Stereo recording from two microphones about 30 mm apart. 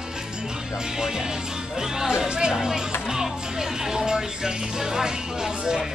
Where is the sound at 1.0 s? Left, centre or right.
Right.